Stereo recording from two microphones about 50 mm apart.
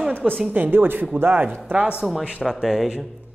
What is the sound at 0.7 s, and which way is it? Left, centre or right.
Speech, right.